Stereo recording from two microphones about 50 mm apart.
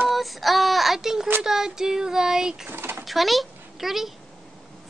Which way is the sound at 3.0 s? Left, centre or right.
Centre.